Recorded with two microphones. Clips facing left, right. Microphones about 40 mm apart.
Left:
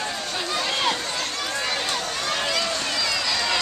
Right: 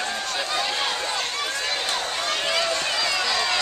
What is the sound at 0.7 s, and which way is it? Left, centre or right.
Run, centre.